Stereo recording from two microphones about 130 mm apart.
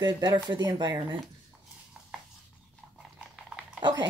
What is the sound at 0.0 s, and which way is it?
Speech, 35° right (ahead or behind).